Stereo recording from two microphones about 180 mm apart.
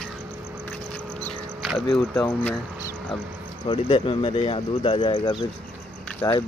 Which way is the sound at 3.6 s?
30° left (ahead or behind).